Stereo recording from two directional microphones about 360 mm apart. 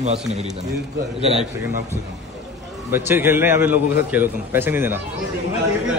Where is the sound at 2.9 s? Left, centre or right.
Centre.